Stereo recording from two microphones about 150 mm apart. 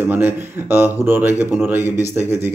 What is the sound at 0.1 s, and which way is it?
Speech, 15° right (ahead or behind).